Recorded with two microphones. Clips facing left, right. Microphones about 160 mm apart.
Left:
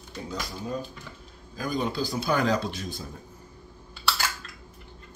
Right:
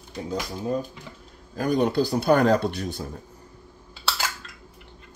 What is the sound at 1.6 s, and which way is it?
Speech, 65° right (ahead or behind).